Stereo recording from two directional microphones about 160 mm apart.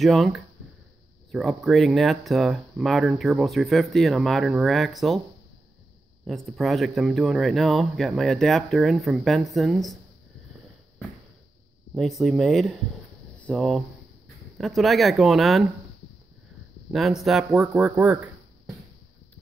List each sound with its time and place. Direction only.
0.0 s speech: centre (ahead or behind)
6.2 s speech: centre (ahead or behind)
11.9 s speech: centre (ahead or behind)
16.9 s speech: centre (ahead or behind)